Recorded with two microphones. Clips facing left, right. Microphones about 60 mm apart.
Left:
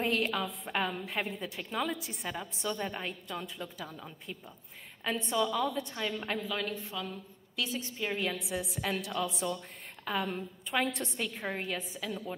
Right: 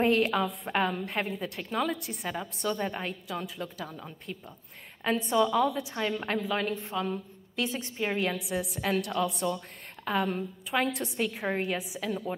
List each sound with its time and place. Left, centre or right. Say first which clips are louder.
0.0 s a woman's voice: right 6 dB; centre
5.4 s a woman's voice: right 5 dB; centre
5.9 s a woman's voice: right 4 dB; centre
8.2 s a woman's voice: right 4 dB; centre